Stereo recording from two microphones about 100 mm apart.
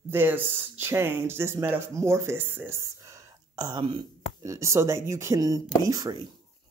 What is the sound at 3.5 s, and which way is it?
Speech, 40° right (ahead or behind).